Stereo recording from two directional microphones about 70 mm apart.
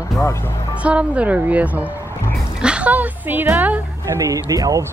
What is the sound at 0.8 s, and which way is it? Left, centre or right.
Speech, centre.